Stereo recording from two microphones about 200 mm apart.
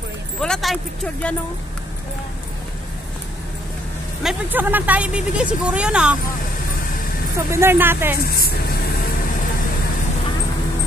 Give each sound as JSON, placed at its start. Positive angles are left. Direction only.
{"t": 0.4, "sound": "a sound", "side_deg": 0}
{"t": 4.2, "sound": "speech", "side_deg": -5}
{"t": 7.3, "sound": "speech", "side_deg": -15}
{"t": 8.2, "sound": "speech", "side_deg": 50}